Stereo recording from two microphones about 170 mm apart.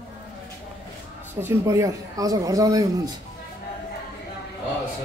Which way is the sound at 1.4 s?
15° right (ahead or behind).